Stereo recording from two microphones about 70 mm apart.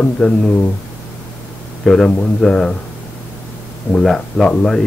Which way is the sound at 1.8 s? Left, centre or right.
Centre.